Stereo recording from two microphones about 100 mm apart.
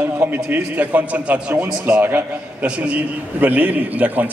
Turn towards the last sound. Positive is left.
turn(degrees=-15)  # may be behind; listen again after turning